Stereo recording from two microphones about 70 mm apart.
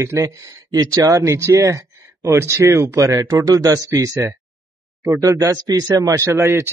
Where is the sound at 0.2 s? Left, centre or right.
Right.